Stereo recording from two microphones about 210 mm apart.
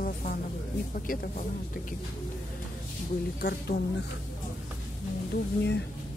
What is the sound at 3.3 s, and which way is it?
Speech, 50° left (ahead or behind).